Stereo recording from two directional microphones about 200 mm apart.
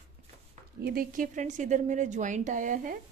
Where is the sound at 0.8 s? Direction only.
45° right (ahead or behind).